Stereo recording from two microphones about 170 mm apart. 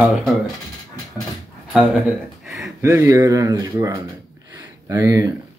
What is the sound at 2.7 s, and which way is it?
Speech, 15° right (ahead or behind).